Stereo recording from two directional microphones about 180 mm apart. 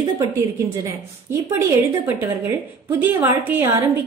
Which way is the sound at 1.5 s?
15° right (ahead or behind).